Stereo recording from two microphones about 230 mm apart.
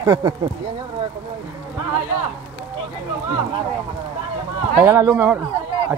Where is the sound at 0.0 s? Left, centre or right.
Centre.